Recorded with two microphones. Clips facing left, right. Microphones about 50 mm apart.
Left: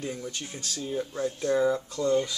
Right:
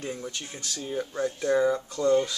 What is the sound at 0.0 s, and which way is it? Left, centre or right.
Speech, centre.